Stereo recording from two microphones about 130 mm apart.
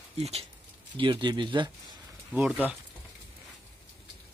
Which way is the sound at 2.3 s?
10° right (ahead or behind).